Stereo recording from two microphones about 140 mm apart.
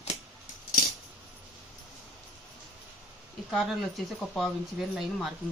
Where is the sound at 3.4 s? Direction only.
5° right (ahead or behind).